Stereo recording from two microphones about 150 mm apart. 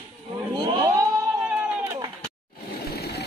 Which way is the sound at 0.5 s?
25° right (ahead or behind).